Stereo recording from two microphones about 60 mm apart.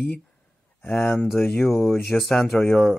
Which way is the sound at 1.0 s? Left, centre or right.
Left.